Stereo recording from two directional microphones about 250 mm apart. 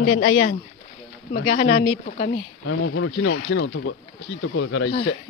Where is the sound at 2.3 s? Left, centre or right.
Left.